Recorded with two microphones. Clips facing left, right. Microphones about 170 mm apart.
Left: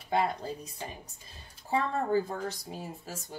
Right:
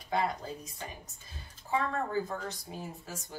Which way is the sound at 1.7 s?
30° left (ahead or behind).